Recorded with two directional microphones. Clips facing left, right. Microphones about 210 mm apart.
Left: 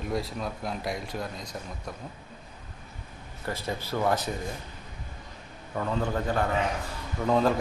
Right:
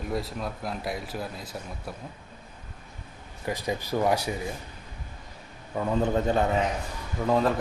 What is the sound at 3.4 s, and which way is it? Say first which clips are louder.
Speech: right 3 dB; 15° right (ahead or behind).